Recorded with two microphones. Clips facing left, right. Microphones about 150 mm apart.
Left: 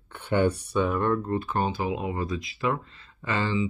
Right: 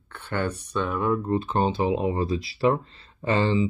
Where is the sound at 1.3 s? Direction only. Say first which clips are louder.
Right 3 dB; 25° right (ahead or behind).